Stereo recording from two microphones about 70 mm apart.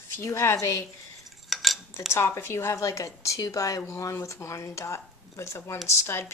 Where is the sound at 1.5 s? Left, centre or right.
Centre.